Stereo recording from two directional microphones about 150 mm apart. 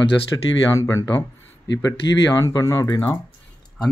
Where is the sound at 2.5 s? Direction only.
25° left (ahead or behind).